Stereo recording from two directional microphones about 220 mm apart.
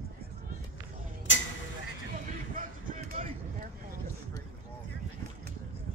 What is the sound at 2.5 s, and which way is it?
Vehicle, 35° right (ahead or behind).